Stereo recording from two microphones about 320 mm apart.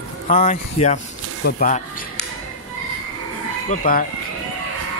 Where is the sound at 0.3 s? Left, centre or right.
Left.